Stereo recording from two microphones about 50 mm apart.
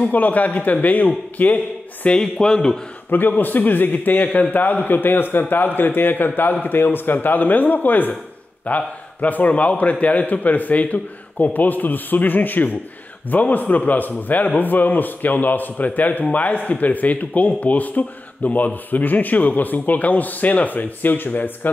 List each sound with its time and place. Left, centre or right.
0.0 s a man's voice: left
2.3 s a man's voice: centre
3.1 s a man's voice: left